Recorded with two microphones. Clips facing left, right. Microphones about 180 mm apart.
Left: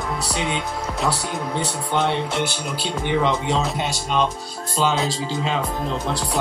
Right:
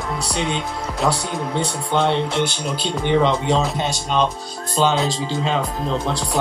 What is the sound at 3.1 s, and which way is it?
Speech, 30° right (ahead or behind).